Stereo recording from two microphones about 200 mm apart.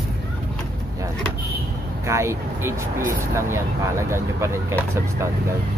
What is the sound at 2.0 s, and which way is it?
Speech, 15° right (ahead or behind).